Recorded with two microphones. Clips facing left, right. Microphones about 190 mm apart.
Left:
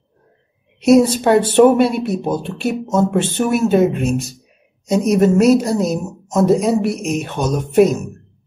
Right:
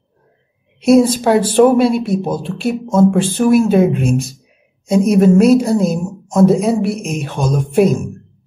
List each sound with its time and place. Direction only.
0.8 s speech: centre (ahead or behind)